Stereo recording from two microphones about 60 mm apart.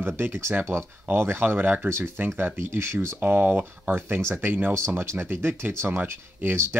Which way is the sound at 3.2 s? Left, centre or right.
Right.